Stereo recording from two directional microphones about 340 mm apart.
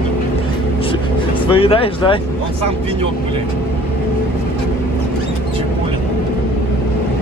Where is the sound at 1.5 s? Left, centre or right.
Centre.